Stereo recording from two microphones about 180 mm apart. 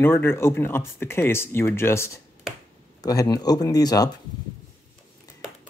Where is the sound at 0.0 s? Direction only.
15° left (ahead or behind).